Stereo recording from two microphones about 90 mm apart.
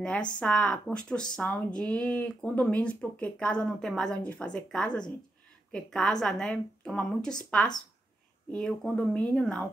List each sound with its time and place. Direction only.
0.0 s speech: 10° left (ahead or behind)